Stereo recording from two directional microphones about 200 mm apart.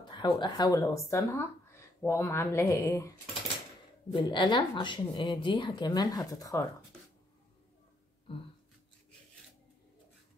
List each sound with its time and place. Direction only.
0.0 s speech: 20° left (ahead or behind)